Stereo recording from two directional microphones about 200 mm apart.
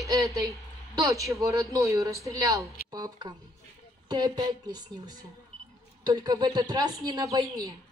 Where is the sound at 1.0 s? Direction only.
15° right (ahead or behind).